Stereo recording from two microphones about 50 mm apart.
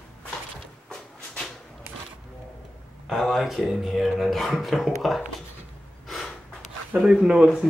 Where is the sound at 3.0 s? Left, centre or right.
Centre.